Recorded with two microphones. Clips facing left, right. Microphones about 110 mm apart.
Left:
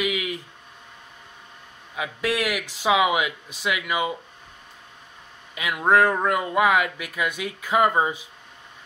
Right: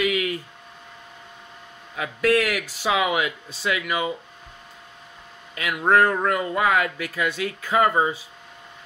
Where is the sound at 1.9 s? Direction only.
15° left (ahead or behind).